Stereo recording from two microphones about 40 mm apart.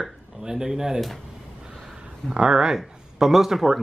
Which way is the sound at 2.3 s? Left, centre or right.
Centre.